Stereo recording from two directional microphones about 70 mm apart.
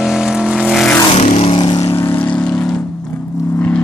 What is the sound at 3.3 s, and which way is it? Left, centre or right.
Vehicle, left.